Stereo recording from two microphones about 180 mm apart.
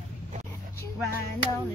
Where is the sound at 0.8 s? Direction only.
15° left (ahead or behind).